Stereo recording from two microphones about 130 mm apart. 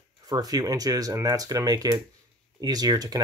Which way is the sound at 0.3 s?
30° right (ahead or behind).